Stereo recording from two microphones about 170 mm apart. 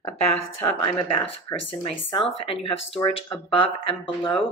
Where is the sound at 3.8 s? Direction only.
30° left (ahead or behind).